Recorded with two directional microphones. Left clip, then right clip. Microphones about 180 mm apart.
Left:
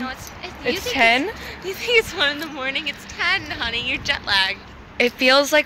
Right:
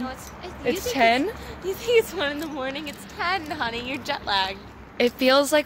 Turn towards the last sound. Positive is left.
turn(degrees=-10)  # may be behind; listen again after turning